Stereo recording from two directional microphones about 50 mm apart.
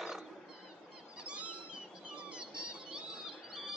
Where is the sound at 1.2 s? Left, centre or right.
Centre.